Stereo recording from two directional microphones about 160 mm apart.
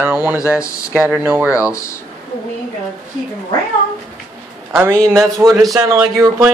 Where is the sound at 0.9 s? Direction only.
10° right (ahead or behind).